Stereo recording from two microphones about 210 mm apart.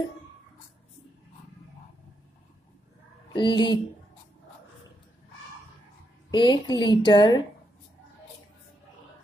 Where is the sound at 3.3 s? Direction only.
20° left (ahead or behind).